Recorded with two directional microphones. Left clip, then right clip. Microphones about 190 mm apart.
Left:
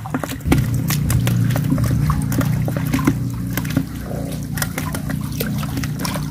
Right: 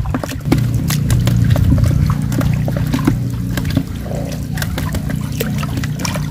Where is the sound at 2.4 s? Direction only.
20° left (ahead or behind).